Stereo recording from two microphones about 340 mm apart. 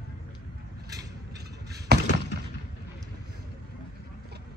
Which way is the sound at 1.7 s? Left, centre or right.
Right.